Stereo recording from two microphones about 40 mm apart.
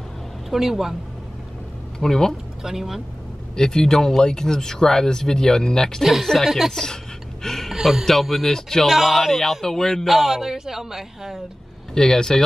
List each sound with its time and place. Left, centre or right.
0.5 s speech: centre
2.0 s speech: centre
2.6 s speech: centre
3.5 s speech: centre
6.2 s speech: centre
6.7 s speech: centre
7.4 s a sound: centre
7.8 s speech: centre
8.8 s speech: centre
10.0 s speech: centre
11.9 s speech: centre